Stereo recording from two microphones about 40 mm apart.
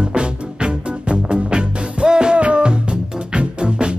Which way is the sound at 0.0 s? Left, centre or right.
Right.